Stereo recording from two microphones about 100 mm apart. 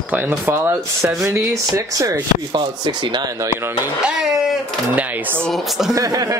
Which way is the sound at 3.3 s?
25° right (ahead or behind).